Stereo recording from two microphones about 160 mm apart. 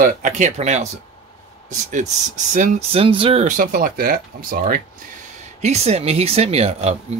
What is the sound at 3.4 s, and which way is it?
Speech, 60° right (ahead or behind).